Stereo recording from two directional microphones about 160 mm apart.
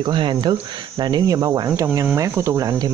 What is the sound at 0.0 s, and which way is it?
Speech, 30° right (ahead or behind).